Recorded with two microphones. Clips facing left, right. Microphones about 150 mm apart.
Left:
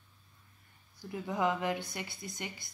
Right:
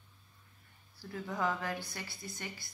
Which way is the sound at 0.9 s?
20° left (ahead or behind).